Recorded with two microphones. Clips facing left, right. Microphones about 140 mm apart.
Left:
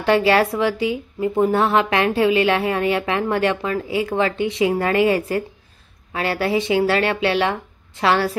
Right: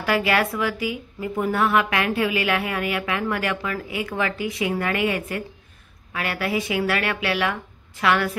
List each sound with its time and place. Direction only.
0.0 s speech: 30° left (ahead or behind)